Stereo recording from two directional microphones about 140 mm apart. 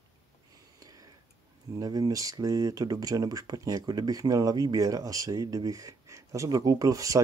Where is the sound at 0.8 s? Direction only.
25° right (ahead or behind).